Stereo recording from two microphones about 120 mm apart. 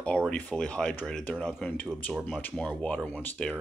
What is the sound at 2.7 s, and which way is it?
Speech, 10° left (ahead or behind).